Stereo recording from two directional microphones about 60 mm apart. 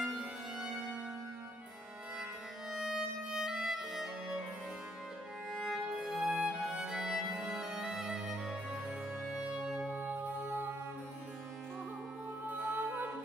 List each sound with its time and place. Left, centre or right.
2.7 s violin: centre
5.5 s music: centre
9.8 s music: right
12.4 s music: right